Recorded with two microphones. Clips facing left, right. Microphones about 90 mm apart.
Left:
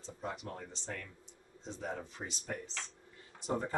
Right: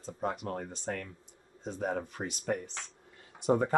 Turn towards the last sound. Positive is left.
turn(degrees=-60)  # may be behind; listen again after turning